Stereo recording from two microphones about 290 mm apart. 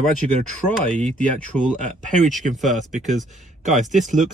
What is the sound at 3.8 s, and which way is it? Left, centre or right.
Speech, right.